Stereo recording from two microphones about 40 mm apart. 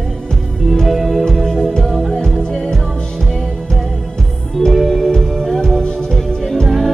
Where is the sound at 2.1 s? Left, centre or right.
Centre.